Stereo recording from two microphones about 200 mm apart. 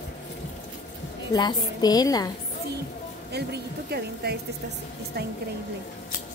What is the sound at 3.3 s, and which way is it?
Speech, 55° right (ahead or behind).